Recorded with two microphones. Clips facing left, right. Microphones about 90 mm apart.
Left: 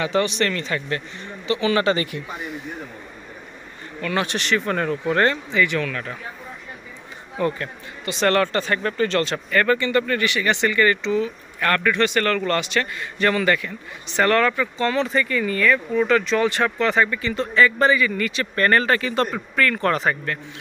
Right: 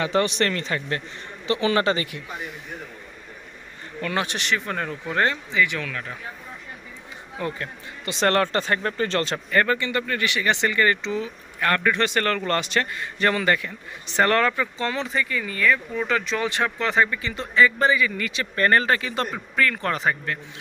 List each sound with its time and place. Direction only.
0.0 s speech: 35° right (ahead or behind)
4.0 s speech: 25° right (ahead or behind); by 6.1 s 5° right (ahead or behind)
7.3 s speech: 15° right (ahead or behind)
8.0 s speech: 35° right (ahead or behind); by 19.2 s 15° right (ahead or behind)
19.3 s speech: 5° right (ahead or behind)